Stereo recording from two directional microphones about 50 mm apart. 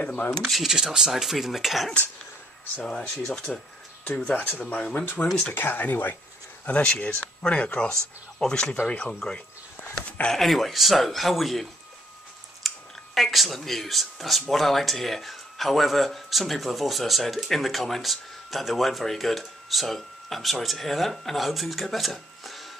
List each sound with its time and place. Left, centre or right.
0.0 s speech: left
0.4 s speech: centre
2.9 s speech: centre
4.1 s speech: left
5.0 s speech: left
6.6 s speech: left
10.3 s speech: centre
12.6 s speech: centre